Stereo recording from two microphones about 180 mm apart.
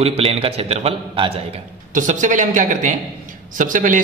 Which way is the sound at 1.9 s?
45° right (ahead or behind).